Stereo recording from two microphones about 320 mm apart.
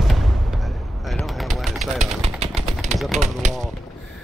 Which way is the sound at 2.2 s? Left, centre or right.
Centre.